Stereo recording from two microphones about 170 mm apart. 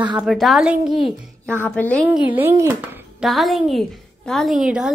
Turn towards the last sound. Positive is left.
turn(degrees=-5)  # may be behind; listen again after turning